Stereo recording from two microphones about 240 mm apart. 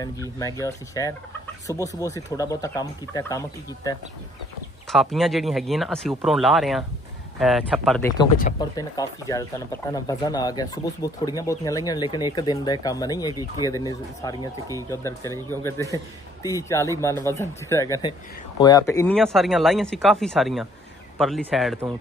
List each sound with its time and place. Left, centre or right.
0.0 s speech: centre
4.8 s speech: centre
8.5 s speech: centre